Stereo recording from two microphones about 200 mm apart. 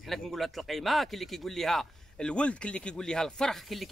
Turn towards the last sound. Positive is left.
turn(degrees=0)  # may be behind; listen again after turning